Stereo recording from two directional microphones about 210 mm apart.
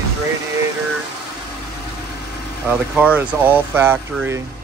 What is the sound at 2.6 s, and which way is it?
Speech, 5° right (ahead or behind).